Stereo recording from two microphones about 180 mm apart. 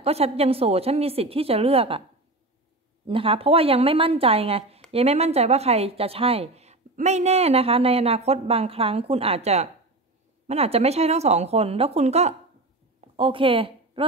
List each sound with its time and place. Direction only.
0.0 s speech: 35° right (ahead or behind)
3.1 s a woman's voice: 30° right (ahead or behind)